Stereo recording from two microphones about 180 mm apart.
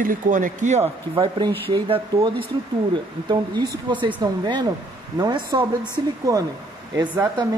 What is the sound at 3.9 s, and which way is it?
Speech, 25° right (ahead or behind).